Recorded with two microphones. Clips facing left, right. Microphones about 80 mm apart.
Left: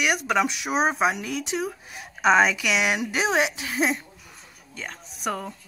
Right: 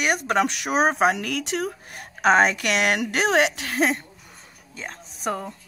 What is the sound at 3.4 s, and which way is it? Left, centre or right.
Speech, right.